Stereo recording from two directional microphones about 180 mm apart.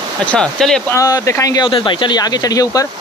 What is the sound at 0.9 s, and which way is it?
Speech, 20° left (ahead or behind).